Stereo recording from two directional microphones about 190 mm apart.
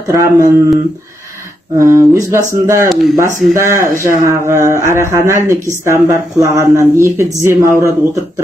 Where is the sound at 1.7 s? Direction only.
15° right (ahead or behind).